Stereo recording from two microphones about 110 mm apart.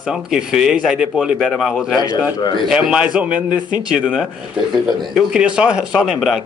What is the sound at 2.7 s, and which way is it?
Speech, 5° right (ahead or behind).